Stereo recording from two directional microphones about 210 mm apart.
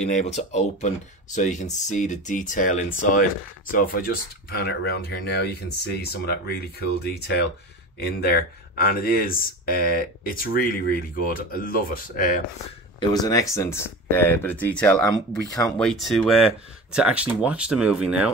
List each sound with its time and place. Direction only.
0.0 s speech: 30° left (ahead or behind)
13.0 s speech: 20° left (ahead or behind); by 18.3 s 5° right (ahead or behind)